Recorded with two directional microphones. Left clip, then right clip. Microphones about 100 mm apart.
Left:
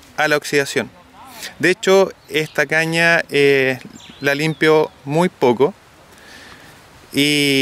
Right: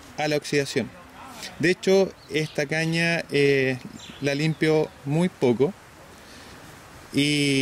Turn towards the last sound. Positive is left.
turn(degrees=30)  # may be behind; listen again after turning